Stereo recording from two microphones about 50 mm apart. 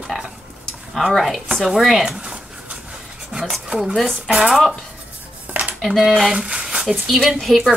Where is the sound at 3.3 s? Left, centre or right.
Centre.